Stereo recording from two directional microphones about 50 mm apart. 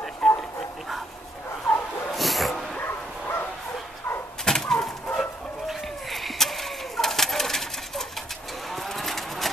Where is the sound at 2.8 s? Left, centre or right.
Left.